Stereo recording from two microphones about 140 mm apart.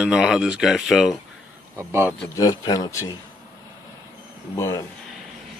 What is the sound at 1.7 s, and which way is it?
Speech, 15° right (ahead or behind).